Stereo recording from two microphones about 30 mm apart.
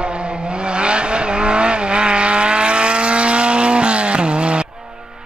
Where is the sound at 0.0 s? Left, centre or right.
Right.